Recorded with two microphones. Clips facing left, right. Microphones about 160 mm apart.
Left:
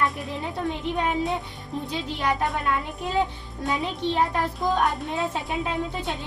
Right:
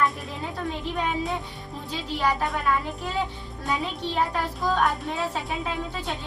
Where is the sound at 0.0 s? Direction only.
Centre (ahead or behind).